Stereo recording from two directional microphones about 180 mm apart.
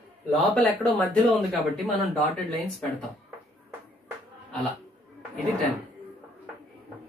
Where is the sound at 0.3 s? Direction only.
5° left (ahead or behind).